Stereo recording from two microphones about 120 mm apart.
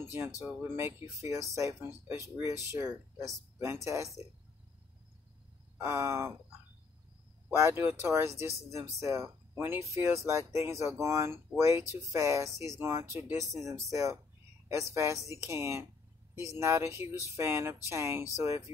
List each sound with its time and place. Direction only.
0.0 s speech: 20° right (ahead or behind)
5.8 s speech: 20° right (ahead or behind)
7.5 s speech: 20° right (ahead or behind)